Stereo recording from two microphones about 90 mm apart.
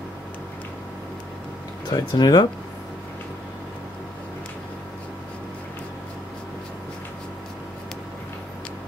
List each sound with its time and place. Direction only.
1.9 s speech: 50° left (ahead or behind)